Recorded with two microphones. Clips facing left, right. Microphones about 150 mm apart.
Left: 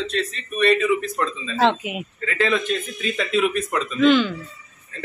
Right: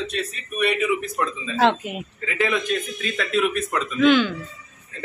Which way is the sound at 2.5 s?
Centre (ahead or behind).